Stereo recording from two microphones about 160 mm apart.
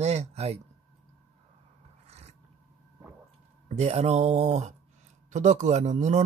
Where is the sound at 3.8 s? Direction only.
40° right (ahead or behind).